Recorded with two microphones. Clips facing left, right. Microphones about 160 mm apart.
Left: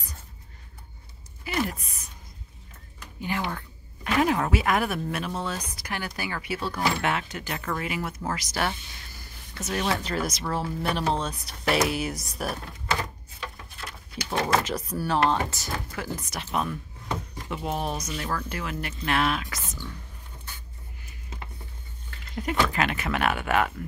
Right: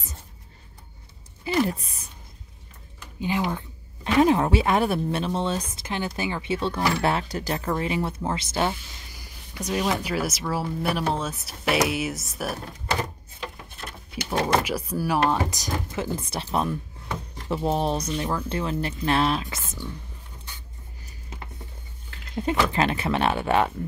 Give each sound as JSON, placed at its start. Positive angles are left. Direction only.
{"t": 1.4, "sound": "speech", "side_deg": -30}
{"t": 3.2, "sound": "speech", "side_deg": -20}
{"t": 9.2, "sound": "speech", "side_deg": -15}
{"t": 12.6, "sound": "a sound", "side_deg": -20}
{"t": 14.6, "sound": "speech", "side_deg": -10}
{"t": 22.3, "sound": "speech", "side_deg": -25}